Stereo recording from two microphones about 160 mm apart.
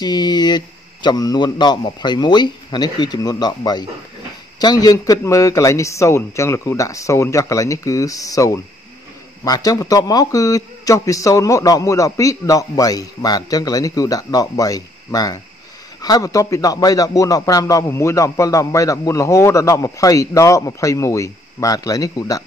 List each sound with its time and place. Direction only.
0.0 s speech: 25° left (ahead or behind)